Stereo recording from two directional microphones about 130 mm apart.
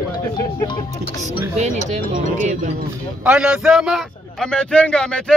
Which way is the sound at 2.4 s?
75° right (ahead or behind).